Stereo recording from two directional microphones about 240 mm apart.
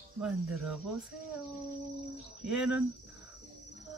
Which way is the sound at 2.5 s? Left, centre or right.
Centre.